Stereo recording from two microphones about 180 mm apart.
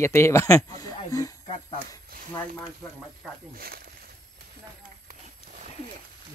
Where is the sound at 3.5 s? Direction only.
55° right (ahead or behind).